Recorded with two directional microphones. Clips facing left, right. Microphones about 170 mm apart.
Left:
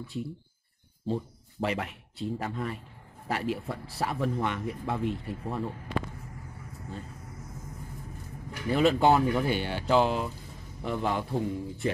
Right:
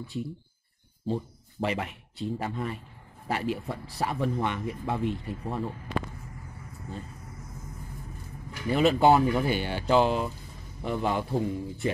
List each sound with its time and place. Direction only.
0.0 s speech: centre (ahead or behind)
8.6 s speech: centre (ahead or behind)